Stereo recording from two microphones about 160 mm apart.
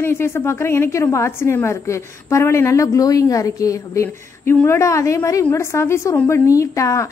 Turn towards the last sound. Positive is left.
turn(degrees=20)  # may be behind; listen again after turning